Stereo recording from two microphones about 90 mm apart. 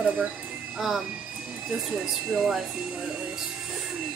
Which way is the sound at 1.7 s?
5° right (ahead or behind).